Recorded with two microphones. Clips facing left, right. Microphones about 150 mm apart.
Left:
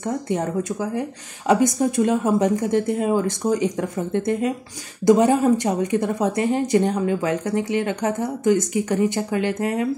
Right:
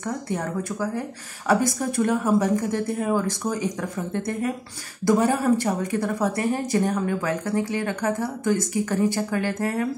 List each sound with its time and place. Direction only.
0.0 s a woman's voice: 20° left (ahead or behind)